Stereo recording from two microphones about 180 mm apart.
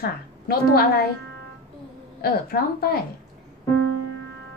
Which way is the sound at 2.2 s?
60° left (ahead or behind).